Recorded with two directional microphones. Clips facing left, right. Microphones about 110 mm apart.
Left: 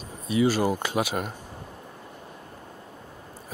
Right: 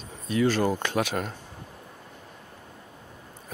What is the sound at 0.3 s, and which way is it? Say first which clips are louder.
Speech: left 1 dB; 10° left (ahead or behind).